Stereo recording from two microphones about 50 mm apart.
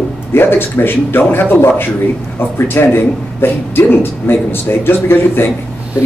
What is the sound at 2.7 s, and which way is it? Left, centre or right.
Speech, left.